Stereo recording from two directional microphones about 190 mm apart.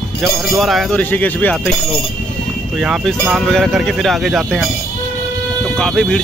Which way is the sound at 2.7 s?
Centre (ahead or behind).